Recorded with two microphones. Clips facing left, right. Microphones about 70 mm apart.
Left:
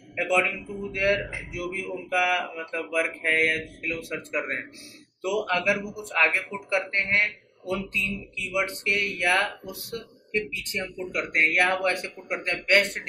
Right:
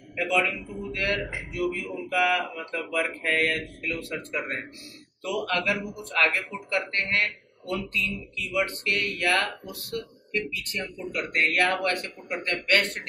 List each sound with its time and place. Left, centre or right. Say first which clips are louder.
0.3 s a man's voice: left 1 dB; centre